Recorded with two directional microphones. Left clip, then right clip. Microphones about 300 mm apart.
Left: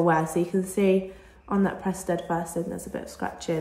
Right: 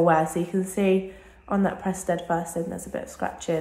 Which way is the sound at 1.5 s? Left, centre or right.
Centre.